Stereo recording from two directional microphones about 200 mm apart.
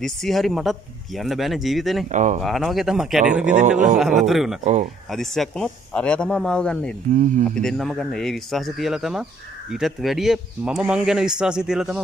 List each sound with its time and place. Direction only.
0.0 s a man's voice: centre (ahead or behind)
2.0 s speech: 40° right (ahead or behind)
2.4 s a man's voice: centre (ahead or behind)
7.1 s speech: 40° right (ahead or behind)
7.5 s a man's voice: centre (ahead or behind)